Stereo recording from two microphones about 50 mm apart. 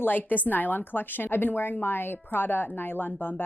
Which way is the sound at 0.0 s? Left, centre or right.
Left.